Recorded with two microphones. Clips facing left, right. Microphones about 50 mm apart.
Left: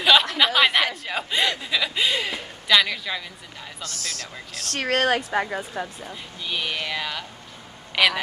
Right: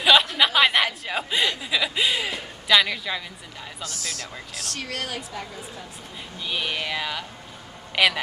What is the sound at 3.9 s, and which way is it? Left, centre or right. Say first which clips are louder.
A woman's voice: left 1 dB; left.